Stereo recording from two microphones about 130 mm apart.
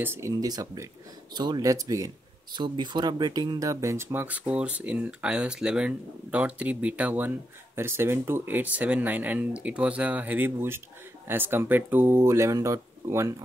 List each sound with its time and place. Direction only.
0.0 s speech: 20° right (ahead or behind)